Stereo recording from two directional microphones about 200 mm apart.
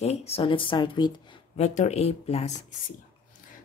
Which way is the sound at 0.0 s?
30° left (ahead or behind).